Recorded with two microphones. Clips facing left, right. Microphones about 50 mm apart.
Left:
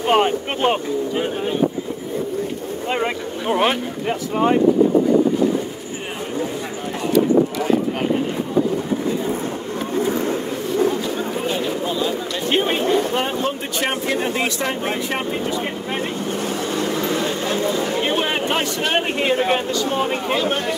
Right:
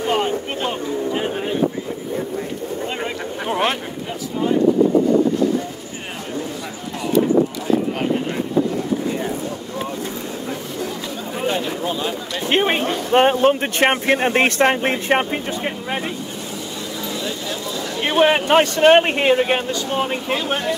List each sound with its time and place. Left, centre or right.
0.0 s vehicle: left
3.4 s speech: centre
9.9 s vehicle: left
11.8 s speech: right
12.5 s speech: right
17.1 s a sound: left
18.0 s speech: right
19.5 s speech: centre